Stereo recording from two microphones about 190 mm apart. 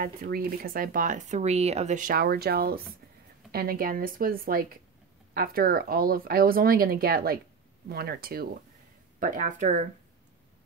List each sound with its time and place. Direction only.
0.0 s speech: 50° right (ahead or behind)
9.2 s speech: 40° right (ahead or behind)